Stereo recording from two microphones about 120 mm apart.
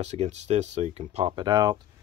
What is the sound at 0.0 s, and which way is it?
Speech, 65° right (ahead or behind).